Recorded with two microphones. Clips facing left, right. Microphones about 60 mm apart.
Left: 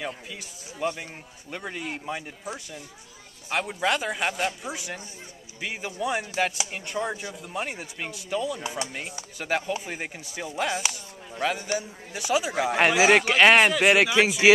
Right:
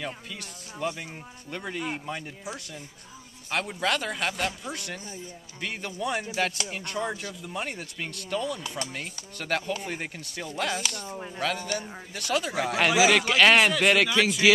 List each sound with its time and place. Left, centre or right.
0.0 s speech: centre
3.4 s speech: centre
8.5 s speech: centre
12.7 s speech: left; by 13.9 s centre
13.9 s speech: left